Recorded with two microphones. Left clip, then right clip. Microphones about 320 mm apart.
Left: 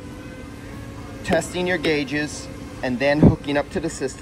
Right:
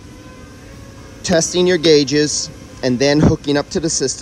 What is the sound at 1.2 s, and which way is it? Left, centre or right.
Speech, right.